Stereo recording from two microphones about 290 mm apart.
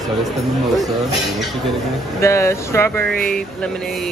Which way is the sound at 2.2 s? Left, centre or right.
Centre.